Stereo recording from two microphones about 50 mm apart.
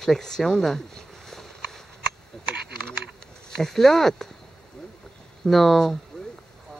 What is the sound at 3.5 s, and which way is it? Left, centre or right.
Speech, centre.